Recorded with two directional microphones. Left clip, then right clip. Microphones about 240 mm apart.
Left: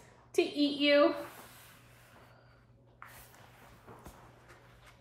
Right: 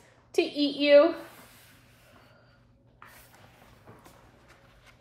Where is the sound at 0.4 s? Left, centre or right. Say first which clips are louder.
Right 3 dB; centre.